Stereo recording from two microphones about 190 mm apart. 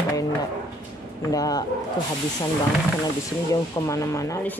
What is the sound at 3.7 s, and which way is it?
Speech, 15° left (ahead or behind).